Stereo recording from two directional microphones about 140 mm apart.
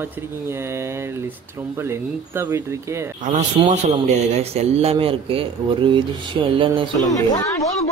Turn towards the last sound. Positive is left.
turn(degrees=25)  # may be behind; listen again after turning